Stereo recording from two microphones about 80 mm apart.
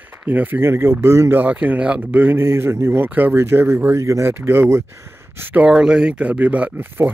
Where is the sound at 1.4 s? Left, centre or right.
Centre.